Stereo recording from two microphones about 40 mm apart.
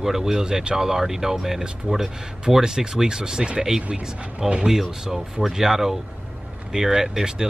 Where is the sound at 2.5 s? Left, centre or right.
Centre.